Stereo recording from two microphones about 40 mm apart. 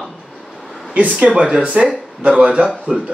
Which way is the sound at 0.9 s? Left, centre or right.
Right.